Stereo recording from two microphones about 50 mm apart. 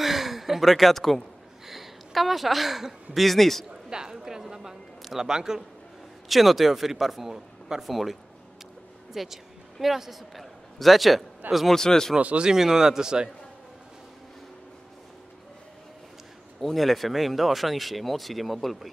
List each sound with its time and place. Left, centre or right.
0.0 s a sound: centre
1.7 s speech: centre
3.9 s a sound: centre
5.0 s a man's voice: centre
11.7 s speech: centre
12.2 s speech: right
12.4 s speech: centre
16.6 s speech: centre